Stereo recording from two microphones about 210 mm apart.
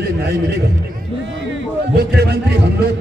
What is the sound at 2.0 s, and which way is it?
Speech, 50° right (ahead or behind).